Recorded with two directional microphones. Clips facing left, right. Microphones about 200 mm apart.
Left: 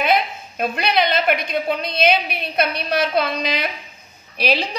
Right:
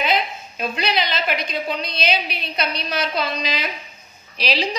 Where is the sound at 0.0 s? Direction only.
55° left (ahead or behind).